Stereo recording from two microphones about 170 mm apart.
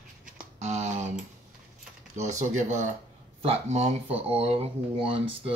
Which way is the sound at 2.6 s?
45° right (ahead or behind).